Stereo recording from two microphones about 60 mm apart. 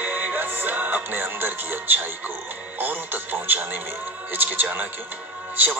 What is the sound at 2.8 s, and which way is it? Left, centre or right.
Radio, right.